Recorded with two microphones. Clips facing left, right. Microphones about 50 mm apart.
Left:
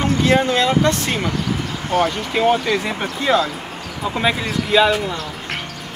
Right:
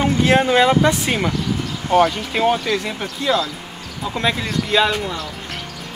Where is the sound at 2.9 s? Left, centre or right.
Left.